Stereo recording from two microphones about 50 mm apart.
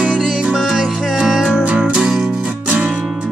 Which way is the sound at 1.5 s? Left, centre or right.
Right.